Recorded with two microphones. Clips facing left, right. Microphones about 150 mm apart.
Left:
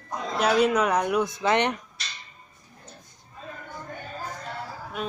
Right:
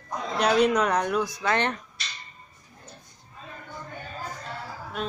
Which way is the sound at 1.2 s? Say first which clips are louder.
Left 3 dB; 25° left (ahead or behind).